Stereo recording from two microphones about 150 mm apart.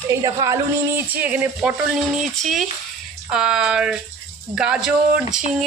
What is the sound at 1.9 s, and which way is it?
Speech, centre (ahead or behind).